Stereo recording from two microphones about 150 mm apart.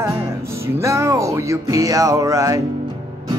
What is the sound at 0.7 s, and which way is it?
Speech, 20° right (ahead or behind).